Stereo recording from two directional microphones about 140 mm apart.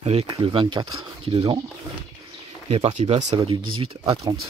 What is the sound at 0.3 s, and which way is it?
Speech, 35° right (ahead or behind).